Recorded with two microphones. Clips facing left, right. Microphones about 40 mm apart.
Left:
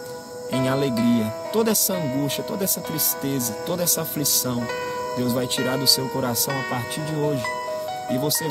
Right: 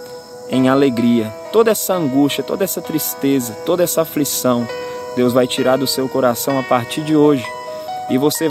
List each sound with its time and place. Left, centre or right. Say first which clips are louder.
0.5 s speech: right 9 dB; right
5.6 s speech: right 8 dB; right
6.7 s speech: right 12 dB; right
8.1 s speech: right 10 dB; right